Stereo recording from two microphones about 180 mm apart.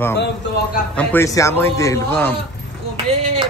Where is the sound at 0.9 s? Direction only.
15° left (ahead or behind).